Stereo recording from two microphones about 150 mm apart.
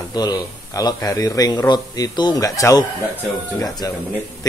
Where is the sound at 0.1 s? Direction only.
25° left (ahead or behind).